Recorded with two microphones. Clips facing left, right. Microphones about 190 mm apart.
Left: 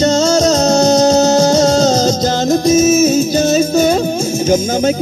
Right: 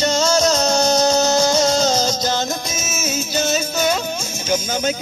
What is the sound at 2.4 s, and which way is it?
Music, 35° left (ahead or behind).